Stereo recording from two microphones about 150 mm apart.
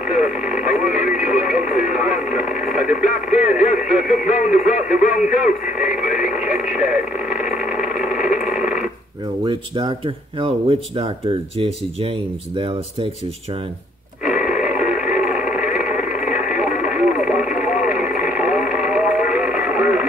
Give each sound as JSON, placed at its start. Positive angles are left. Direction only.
{"t": 0.1, "sound": "radio", "side_deg": -5}
{"t": 4.5, "sound": "speech", "side_deg": -5}
{"t": 5.1, "sound": "radio", "side_deg": -5}
{"t": 9.4, "sound": "speech", "side_deg": -35}
{"t": 14.2, "sound": "radio", "side_deg": -5}
{"t": 17.6, "sound": "a sound", "side_deg": -5}